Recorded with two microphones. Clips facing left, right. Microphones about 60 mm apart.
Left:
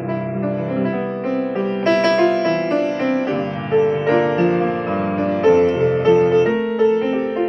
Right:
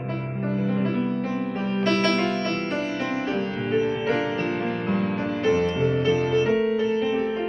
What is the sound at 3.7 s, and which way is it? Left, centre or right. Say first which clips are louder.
Music: left 9 dB; left.